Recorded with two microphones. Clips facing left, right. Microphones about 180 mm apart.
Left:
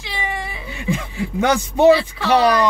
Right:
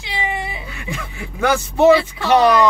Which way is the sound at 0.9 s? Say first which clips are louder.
Left 7 dB; 20° left (ahead or behind).